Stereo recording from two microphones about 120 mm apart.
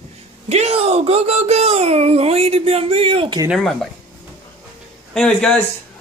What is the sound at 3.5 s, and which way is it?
Speech, centre (ahead or behind).